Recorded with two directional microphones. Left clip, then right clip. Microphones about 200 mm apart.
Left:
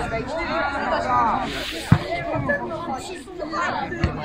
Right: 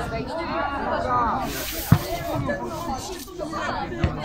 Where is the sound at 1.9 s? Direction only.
40° left (ahead or behind).